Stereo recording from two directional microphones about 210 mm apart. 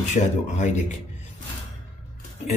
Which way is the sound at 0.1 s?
35° left (ahead or behind).